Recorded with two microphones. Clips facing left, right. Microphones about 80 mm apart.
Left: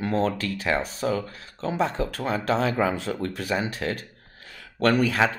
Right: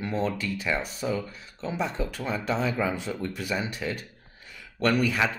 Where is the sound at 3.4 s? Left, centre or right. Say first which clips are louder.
Left 3 dB; left.